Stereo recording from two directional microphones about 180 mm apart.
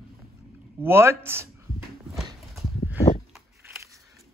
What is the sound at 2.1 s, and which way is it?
Horse, centre (ahead or behind).